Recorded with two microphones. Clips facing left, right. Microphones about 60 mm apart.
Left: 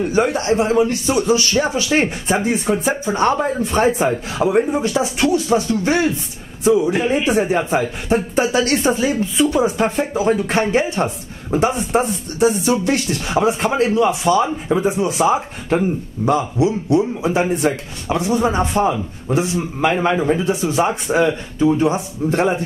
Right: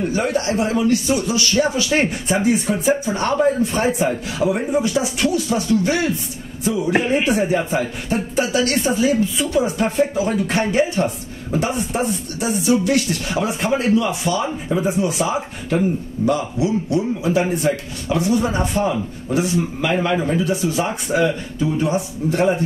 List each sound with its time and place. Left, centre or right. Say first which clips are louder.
0.1 s a woman's voice: left 3 dB; left
1.9 s a woman's voice: left 1 dB; centre
2.4 s a woman's voice: right 4 dB; left
7.2 s a woman's voice: left 2 dB; left